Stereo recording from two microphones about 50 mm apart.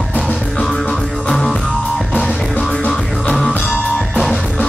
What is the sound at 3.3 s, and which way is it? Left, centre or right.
Music, centre.